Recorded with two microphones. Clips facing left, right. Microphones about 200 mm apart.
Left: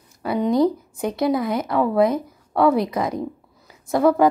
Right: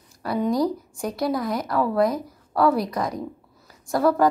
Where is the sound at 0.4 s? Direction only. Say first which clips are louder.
Left 4 dB; 20° left (ahead or behind).